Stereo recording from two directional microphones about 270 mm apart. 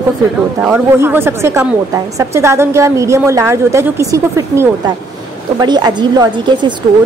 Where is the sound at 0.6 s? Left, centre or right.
Centre.